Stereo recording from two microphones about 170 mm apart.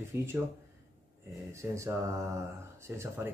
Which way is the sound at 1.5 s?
15° right (ahead or behind).